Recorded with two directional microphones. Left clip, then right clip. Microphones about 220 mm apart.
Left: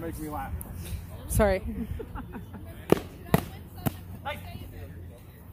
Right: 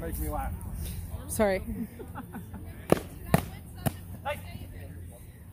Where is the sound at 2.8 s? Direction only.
15° right (ahead or behind).